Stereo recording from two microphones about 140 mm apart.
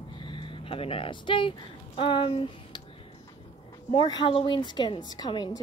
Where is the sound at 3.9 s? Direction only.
35° left (ahead or behind).